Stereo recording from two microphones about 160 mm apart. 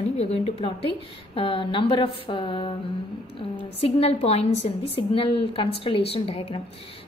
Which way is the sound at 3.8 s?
40° left (ahead or behind).